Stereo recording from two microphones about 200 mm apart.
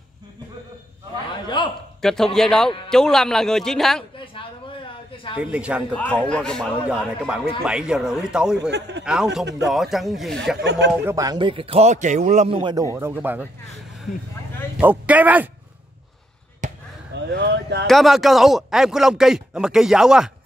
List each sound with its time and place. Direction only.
1.6 s a man's voice: 25° left (ahead or behind)
2.0 s speech: centre (ahead or behind)
5.1 s a sound: 25° left (ahead or behind)
5.4 s speech: 5° right (ahead or behind)
8.5 s a man's voice: 60° right (ahead or behind)
9.0 s speech: 5° right (ahead or behind)
10.6 s a man's voice: 60° right (ahead or behind)
11.1 s a man's voice: 20° right (ahead or behind)
12.9 s speech: 10° right (ahead or behind)
14.1 s speech: 40° left (ahead or behind)
14.8 s speech: 10° right (ahead or behind)
16.6 s basketball bounce: 40° right (ahead or behind)
17.1 s speech: 55° right (ahead or behind)
17.8 s speech: centre (ahead or behind)